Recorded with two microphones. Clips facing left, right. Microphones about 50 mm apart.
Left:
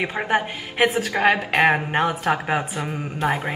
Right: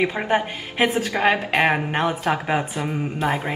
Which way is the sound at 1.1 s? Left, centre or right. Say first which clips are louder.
Left 1 dB; centre.